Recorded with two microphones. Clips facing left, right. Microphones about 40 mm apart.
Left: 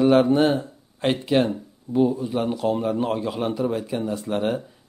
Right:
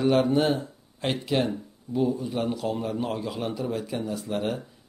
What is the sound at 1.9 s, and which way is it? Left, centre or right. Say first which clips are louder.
A man's voice: left 5 dB; centre.